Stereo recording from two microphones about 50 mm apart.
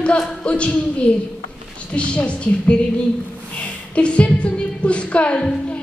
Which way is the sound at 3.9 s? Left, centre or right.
Left.